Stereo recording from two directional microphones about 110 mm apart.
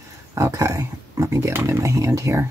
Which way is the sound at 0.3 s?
30° right (ahead or behind).